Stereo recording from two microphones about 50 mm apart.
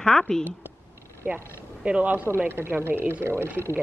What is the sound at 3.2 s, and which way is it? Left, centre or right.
Speech, right.